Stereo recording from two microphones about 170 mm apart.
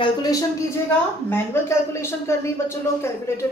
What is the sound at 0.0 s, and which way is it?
A woman's voice, 20° left (ahead or behind).